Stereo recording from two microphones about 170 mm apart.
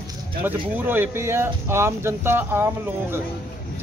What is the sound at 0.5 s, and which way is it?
Speech, 10° right (ahead or behind).